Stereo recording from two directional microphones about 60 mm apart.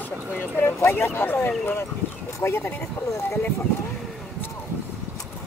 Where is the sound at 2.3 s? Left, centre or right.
Left.